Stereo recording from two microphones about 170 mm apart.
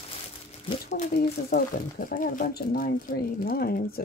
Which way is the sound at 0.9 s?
60° left (ahead or behind).